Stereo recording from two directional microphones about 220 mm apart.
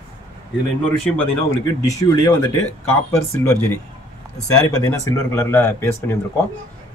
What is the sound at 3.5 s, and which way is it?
Speech, 10° left (ahead or behind).